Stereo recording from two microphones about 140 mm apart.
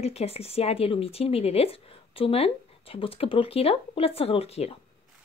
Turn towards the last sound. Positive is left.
turn(degrees=45)  # may be behind; listen again after turning